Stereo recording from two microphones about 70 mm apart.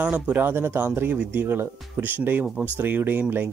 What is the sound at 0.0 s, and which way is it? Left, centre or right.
Speech, right.